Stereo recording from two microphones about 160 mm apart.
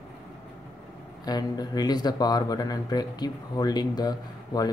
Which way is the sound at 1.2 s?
25° left (ahead or behind).